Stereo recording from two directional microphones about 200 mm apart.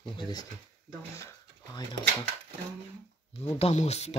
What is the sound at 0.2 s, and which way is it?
Speech, 20° left (ahead or behind).